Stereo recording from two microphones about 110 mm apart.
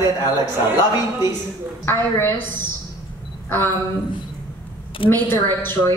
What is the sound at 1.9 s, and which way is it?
Speech, 20° left (ahead or behind).